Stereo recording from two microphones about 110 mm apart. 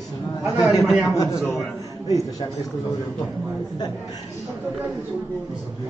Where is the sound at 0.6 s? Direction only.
30° left (ahead or behind).